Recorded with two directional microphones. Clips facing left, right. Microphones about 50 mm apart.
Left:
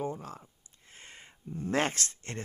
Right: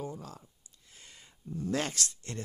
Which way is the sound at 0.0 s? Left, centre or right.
Left.